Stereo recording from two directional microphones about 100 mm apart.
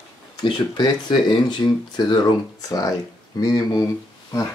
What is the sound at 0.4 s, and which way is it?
Speech, 45° left (ahead or behind).